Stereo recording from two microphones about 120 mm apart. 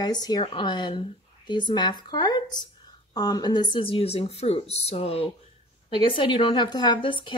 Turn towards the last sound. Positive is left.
turn(degrees=45)  # may be behind; listen again after turning